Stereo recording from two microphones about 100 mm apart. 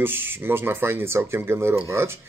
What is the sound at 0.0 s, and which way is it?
Speech, 20° right (ahead or behind).